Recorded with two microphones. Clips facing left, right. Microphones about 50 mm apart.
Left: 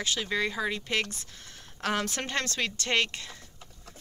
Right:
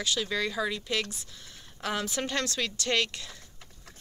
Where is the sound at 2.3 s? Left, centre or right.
Left.